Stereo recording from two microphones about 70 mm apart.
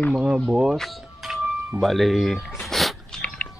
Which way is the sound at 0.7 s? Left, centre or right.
Centre.